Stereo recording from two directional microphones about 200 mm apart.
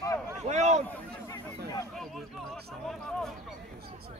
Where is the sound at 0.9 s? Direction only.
15° left (ahead or behind).